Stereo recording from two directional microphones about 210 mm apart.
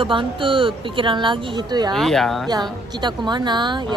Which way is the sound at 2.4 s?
20° right (ahead or behind).